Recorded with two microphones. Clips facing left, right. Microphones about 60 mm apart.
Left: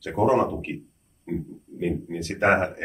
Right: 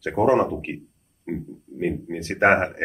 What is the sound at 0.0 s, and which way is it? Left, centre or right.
Speech, right.